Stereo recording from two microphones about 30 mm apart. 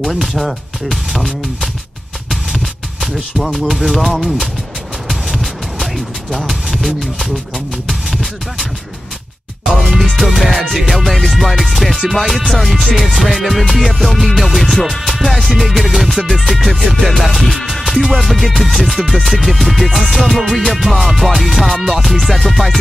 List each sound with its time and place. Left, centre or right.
0.1 s music: centre
6.3 s speech: centre
7.9 s music: centre
9.7 s music: centre
11.1 s music: centre